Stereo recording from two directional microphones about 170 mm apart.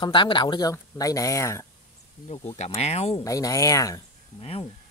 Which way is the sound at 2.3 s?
35° left (ahead or behind).